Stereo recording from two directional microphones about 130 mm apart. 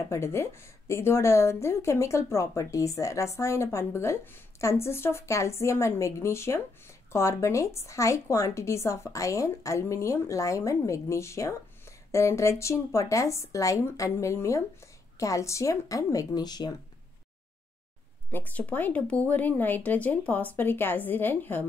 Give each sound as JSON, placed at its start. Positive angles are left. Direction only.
{"t": 0.1, "sound": "a woman's voice", "side_deg": 20}
{"t": 18.3, "sound": "speech", "side_deg": 10}